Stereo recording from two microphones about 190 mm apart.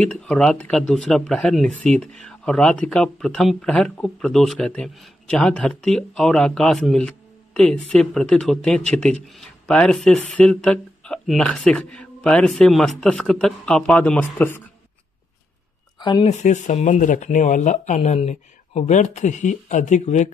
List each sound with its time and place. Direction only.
0.0 s speech: 5° left (ahead or behind)
16.0 s speech: 25° left (ahead or behind)
16.3 s speech: 40° left (ahead or behind)